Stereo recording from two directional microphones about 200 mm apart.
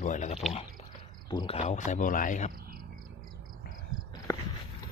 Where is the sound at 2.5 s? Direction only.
50° right (ahead or behind).